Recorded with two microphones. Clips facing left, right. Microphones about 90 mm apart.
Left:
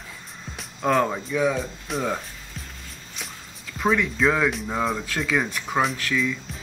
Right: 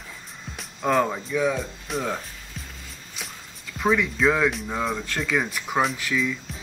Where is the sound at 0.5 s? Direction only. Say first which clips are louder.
Left 1 dB; centre (ahead or behind).